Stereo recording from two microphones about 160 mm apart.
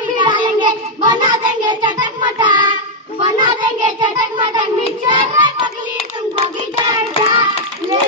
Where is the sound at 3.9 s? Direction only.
30° right (ahead or behind).